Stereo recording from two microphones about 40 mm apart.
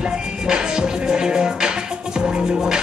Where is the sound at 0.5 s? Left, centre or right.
Centre.